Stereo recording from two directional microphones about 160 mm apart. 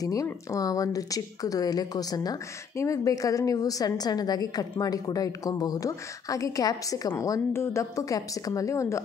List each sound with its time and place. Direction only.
0.0 s a woman's voice: 20° left (ahead or behind)